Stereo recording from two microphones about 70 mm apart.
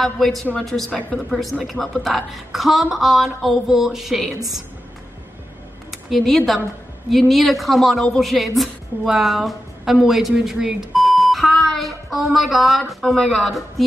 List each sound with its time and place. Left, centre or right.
0.0 s a woman's voice: centre
5.9 s a woman's voice: centre